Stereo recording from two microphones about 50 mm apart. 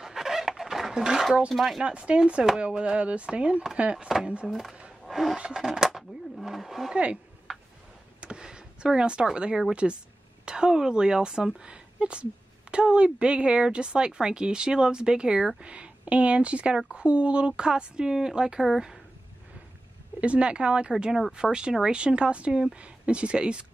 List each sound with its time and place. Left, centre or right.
0.0 s a sound: centre
1.5 s speech: centre
1.8 s a woman's voice: centre
4.5 s a woman's voice: centre
6.9 s a woman's voice: right
7.5 s a sound: centre
8.2 s a woman's voice: centre
20.2 s a woman's voice: right